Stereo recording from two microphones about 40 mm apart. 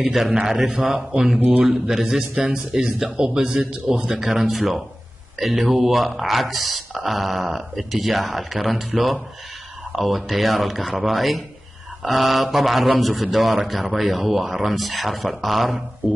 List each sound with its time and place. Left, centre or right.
0.0 s a man's voice: centre
1.7 s a man's voice: centre